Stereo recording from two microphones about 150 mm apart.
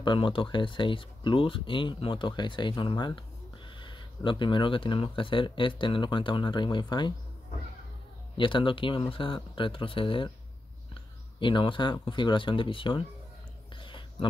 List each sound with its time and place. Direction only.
0.0 s speech: 35° left (ahead or behind)
8.4 s speech: 35° left (ahead or behind)
11.3 s speech: 35° left (ahead or behind)
13.7 s a sound: 35° left (ahead or behind)